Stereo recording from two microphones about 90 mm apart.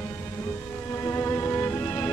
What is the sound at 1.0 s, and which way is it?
Music, 30° left (ahead or behind).